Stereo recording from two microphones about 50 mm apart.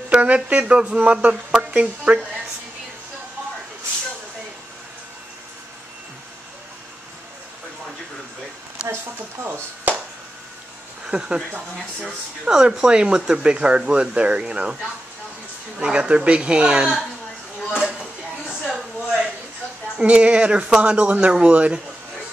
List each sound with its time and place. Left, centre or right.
0.1 s speech: right
8.8 s speech: right
11.1 s speech: centre
15.8 s speech: centre
17.7 s a sound: centre
20.0 s speech: right